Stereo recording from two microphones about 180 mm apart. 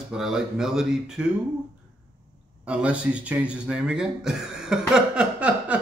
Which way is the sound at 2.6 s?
5° right (ahead or behind).